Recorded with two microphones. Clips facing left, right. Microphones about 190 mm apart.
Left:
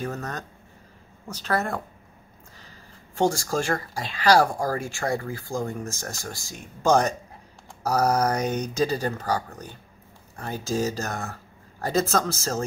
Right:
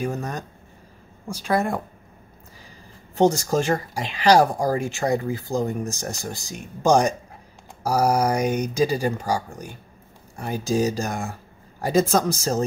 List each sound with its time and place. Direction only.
0.0 s speech: 15° right (ahead or behind)
3.2 s speech: 20° right (ahead or behind)